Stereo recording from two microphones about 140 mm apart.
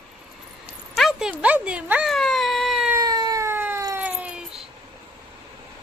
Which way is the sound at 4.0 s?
10° right (ahead or behind).